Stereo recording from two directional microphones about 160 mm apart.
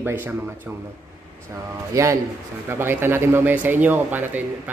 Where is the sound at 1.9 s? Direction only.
20° right (ahead or behind).